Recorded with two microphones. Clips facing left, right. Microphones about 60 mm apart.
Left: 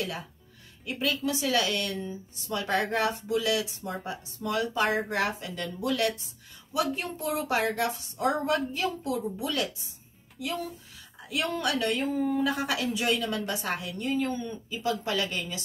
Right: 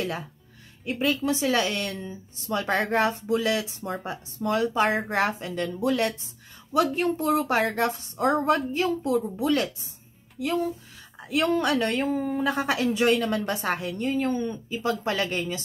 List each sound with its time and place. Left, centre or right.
0.8 s a woman's voice: right
6.7 s a woman's voice: right